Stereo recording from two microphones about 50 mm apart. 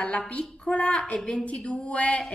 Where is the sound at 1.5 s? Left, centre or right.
Left.